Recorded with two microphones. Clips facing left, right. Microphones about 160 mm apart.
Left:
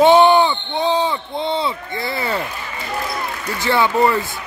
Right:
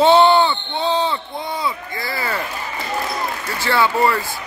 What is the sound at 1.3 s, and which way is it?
Speech, 25° left (ahead or behind).